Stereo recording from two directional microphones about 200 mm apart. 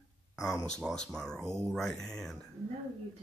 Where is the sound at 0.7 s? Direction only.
5° left (ahead or behind).